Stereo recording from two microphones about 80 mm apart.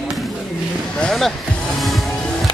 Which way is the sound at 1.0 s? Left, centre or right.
Centre.